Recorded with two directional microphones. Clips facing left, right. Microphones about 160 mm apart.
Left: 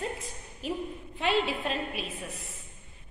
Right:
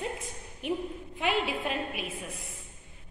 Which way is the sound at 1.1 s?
15° right (ahead or behind).